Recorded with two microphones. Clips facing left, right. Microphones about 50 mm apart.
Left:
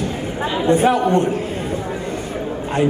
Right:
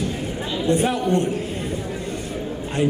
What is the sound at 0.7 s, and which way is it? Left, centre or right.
Speech, centre.